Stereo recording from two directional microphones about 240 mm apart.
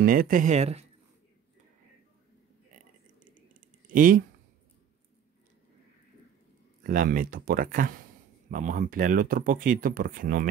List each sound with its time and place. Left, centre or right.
0.0 s speech: right
3.9 s speech: right
6.8 s speech: right